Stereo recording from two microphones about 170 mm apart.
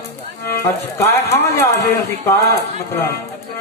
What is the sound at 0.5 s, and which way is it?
A man's voice, 15° left (ahead or behind).